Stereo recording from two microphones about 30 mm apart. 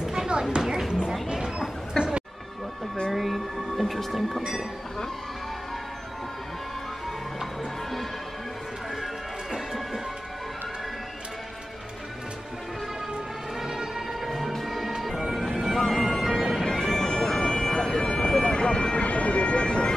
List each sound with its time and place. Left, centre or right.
0.4 s a sound: right
2.0 s music: left
3.1 s music: centre
4.1 s train: centre
13.6 s music: centre
16.6 s bagpipes: left
19.0 s a sound: left